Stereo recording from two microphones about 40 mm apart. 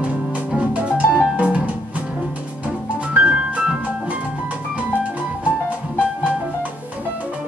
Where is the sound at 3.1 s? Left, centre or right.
Right.